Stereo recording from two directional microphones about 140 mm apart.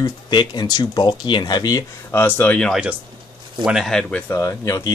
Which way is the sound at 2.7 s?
5° right (ahead or behind).